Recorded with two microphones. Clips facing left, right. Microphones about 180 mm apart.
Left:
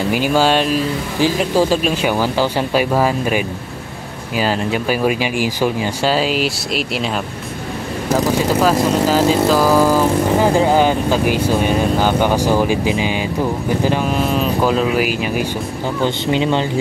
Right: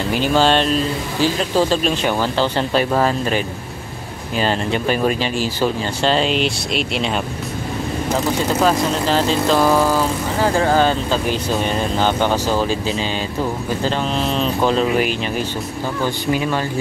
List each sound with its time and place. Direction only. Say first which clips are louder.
0.1 s speech: even; 10° left (ahead or behind)
8.6 s speech: left 3 dB; 5° left (ahead or behind)
10.4 s speech: even; 15° left (ahead or behind)
16.0 s speech: left 3 dB; 20° left (ahead or behind)